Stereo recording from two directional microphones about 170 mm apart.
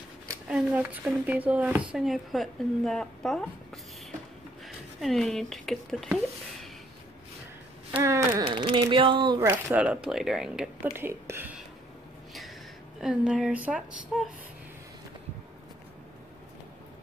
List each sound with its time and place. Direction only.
0.5 s a woman's voice: 10° right (ahead or behind)
7.9 s speech: 15° right (ahead or behind)
8.5 s speech: 30° right (ahead or behind)
9.4 s speech: 15° right (ahead or behind)
13.0 s a woman's voice: 5° right (ahead or behind)